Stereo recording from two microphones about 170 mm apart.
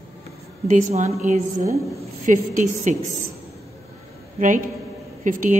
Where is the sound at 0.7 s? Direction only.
45° right (ahead or behind).